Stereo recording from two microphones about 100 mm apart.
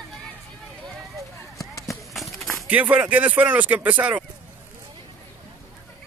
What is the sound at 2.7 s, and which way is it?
Speech, 15° right (ahead or behind).